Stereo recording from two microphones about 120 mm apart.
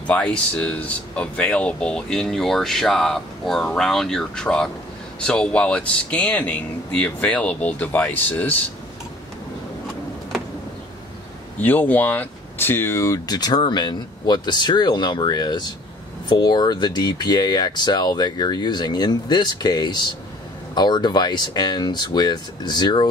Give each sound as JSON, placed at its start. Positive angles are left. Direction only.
{"t": 0.0, "sound": "speech", "side_deg": 10}
{"t": 11.6, "sound": "speech", "side_deg": 15}